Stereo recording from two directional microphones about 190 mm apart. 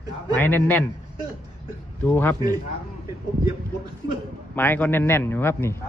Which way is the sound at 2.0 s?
10° left (ahead or behind).